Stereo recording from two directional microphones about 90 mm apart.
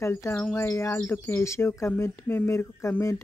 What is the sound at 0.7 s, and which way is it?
Speech, 30° left (ahead or behind).